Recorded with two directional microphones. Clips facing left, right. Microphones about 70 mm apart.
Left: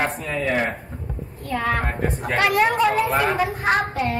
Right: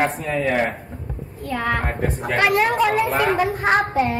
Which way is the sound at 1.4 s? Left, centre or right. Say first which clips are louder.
Even; centre.